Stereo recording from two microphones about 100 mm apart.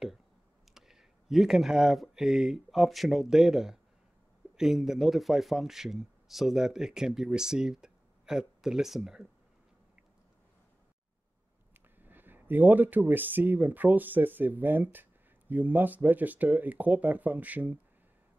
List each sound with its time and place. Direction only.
0.7 s speech: 5° right (ahead or behind)
11.7 s speech: 20° right (ahead or behind)